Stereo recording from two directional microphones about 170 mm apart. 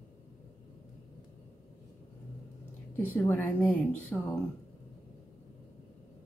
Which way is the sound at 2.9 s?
10° left (ahead or behind).